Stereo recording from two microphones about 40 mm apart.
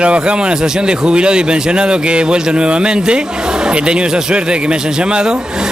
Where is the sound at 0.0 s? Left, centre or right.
Right.